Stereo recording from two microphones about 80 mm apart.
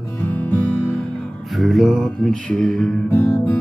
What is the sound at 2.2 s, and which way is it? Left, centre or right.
Music, centre.